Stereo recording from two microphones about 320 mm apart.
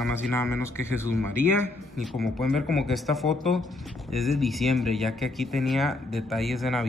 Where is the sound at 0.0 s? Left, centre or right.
Centre.